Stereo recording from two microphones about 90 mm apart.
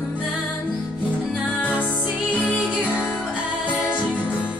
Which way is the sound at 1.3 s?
15° left (ahead or behind).